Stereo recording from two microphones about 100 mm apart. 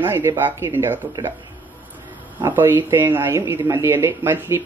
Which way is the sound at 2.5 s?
20° right (ahead or behind).